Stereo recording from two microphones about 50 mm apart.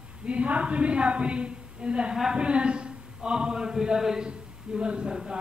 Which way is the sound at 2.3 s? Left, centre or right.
Right.